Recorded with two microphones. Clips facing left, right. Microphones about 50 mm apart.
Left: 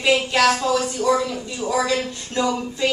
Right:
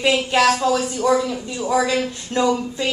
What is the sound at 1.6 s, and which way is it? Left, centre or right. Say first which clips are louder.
Speech: right 2 dB; centre.